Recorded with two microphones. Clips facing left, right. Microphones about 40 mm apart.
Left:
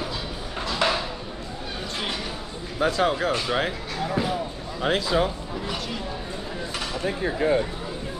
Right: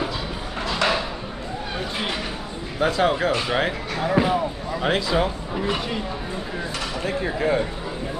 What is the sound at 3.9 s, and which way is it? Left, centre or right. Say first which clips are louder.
Speech: right 8 dB; right.